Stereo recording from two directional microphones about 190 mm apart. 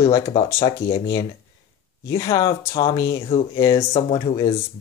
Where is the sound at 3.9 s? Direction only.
30° left (ahead or behind).